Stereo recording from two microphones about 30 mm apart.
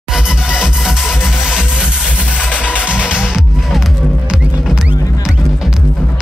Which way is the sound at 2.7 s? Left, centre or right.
Right.